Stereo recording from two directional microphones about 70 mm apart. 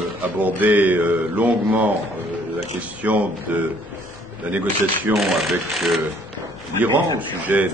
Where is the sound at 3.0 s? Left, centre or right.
Right.